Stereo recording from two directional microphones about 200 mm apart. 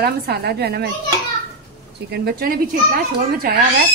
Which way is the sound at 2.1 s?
50° right (ahead or behind).